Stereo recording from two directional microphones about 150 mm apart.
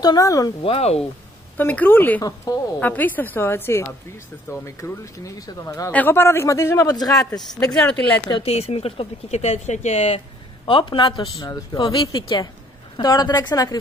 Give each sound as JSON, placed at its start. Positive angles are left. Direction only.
{"t": 0.0, "sound": "speech", "side_deg": 25}
{"t": 0.6, "sound": "a man's voice", "side_deg": 40}
{"t": 1.6, "sound": "a man's voice", "side_deg": 10}
{"t": 2.2, "sound": "speech", "side_deg": 25}
{"t": 2.8, "sound": "a man's voice", "side_deg": 10}
{"t": 8.3, "sound": "speech", "side_deg": 40}
{"t": 10.6, "sound": "a man's voice", "side_deg": 35}